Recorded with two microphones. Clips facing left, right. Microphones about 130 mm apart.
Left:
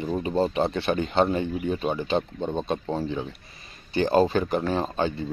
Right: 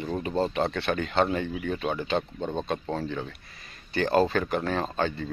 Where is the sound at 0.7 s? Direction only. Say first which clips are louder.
Left 3 dB; 30° left (ahead or behind).